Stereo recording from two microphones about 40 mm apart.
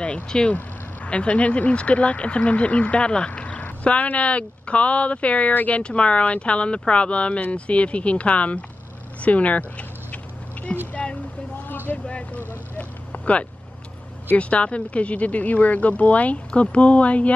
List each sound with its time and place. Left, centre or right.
0.0 s speech: left
5.5 s speech: left
5.8 s speech: left
9.2 s dog: left
10.9 s vehicle: left
14.3 s speech: left